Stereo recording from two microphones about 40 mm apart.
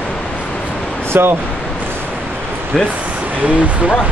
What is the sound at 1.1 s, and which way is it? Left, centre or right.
Speech, right.